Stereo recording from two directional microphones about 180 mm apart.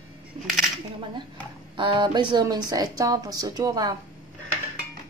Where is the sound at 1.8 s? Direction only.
25° right (ahead or behind).